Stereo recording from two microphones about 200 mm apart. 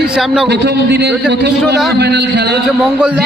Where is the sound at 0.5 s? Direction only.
60° right (ahead or behind).